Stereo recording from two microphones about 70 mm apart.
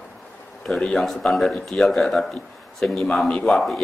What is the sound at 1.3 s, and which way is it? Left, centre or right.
A man's voice, centre.